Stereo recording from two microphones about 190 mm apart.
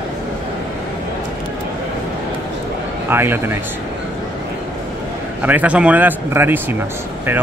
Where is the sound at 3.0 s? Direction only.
10° right (ahead or behind).